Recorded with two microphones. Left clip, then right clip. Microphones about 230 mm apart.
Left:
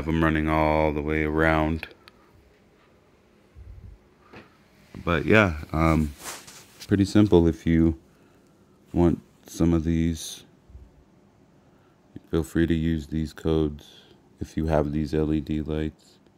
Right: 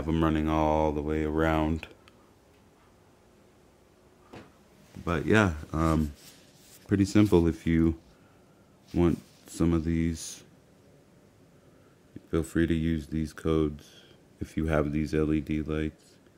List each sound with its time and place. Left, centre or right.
0.0 s speech: centre
5.0 s speech: centre
8.9 s speech: centre
12.3 s speech: centre